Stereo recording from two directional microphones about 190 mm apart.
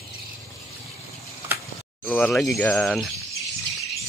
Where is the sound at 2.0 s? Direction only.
5° left (ahead or behind).